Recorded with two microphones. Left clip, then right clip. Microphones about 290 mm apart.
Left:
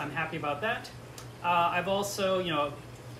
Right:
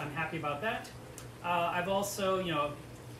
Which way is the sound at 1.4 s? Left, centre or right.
Centre.